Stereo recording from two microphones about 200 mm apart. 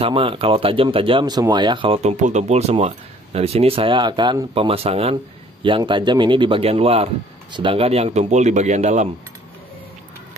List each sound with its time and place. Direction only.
0.0 s speech: 25° right (ahead or behind)